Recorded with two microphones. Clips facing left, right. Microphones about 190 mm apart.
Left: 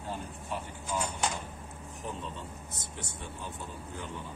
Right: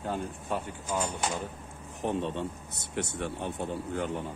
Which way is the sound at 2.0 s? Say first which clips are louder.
Right 10 dB; 70° right (ahead or behind).